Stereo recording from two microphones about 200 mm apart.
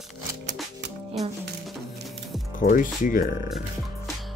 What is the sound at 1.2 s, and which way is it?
Music, centre (ahead or behind).